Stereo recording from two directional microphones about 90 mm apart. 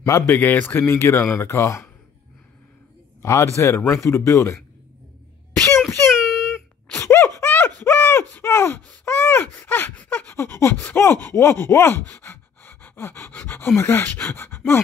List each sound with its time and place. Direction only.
0.0 s speech: 25° left (ahead or behind)
3.2 s a man's voice: 35° left (ahead or behind)
5.9 s a sound: 30° left (ahead or behind)
6.1 s wail: 5° right (ahead or behind)
7.0 s gasp: 30° left (ahead or behind)
7.8 s a sound: 25° left (ahead or behind)
9.0 s gasp: 25° left (ahead or behind)